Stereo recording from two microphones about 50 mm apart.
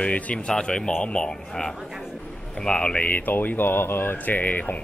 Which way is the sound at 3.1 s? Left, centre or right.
Left.